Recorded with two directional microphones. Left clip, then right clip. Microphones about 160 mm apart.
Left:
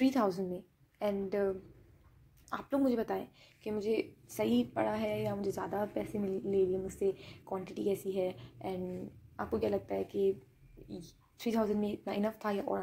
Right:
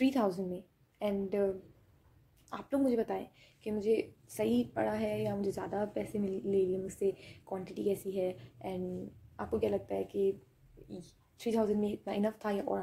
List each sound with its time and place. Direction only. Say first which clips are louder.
0.0 s a woman's voice: even; 10° right (ahead or behind)
2.5 s a woman's voice: even; 10° right (ahead or behind)